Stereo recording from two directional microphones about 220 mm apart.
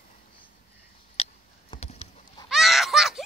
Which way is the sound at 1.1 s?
30° left (ahead or behind).